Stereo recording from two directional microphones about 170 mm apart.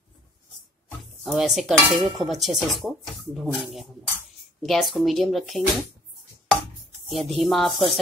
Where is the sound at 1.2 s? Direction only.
5° right (ahead or behind).